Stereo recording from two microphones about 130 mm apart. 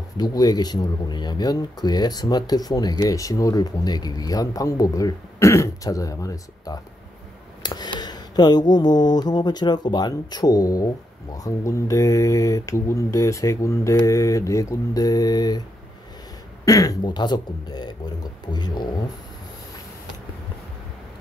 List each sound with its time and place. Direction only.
0.2 s speech: 30° left (ahead or behind)
16.6 s speech: 25° left (ahead or behind)